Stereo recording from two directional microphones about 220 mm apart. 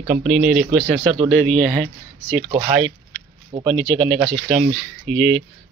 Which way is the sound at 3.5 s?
25° right (ahead or behind).